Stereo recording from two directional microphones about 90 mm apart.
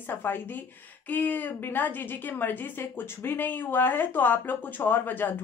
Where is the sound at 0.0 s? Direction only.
20° left (ahead or behind).